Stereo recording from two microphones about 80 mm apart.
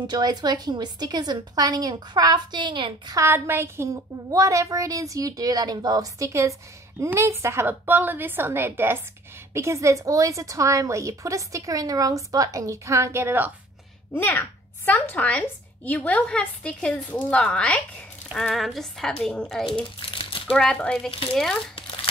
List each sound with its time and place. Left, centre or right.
0.0 s a woman's voice: right
3.2 s a woman's voice: right
14.9 s a woman's voice: left
18.3 s speech: centre
19.6 s a child's voice: left
20.5 s a woman's voice: centre